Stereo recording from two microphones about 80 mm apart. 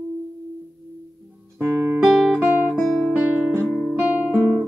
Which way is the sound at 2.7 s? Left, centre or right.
Right.